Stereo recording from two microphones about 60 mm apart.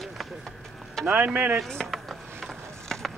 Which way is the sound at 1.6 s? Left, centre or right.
Centre.